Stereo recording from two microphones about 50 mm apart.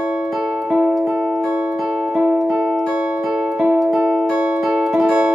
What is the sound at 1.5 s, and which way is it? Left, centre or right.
Music, right.